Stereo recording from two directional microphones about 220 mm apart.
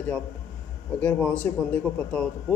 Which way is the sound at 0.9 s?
5° left (ahead or behind).